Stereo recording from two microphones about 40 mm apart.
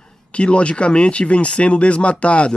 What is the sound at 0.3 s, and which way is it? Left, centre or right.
Speech, left.